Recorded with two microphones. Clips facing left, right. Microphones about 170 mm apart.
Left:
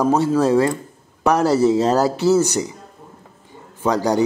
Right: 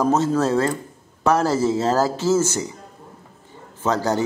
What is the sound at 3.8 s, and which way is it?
Speech, 15° left (ahead or behind).